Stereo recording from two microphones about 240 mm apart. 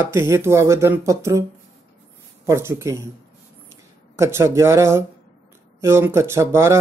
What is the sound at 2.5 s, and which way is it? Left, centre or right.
Speech, centre.